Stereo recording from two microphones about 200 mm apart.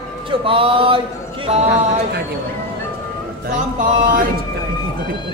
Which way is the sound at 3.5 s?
40° right (ahead or behind).